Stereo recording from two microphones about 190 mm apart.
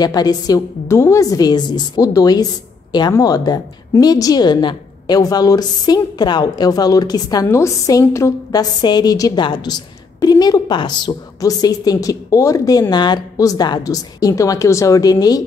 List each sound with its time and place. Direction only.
0.0 s a woman's voice: 20° left (ahead or behind)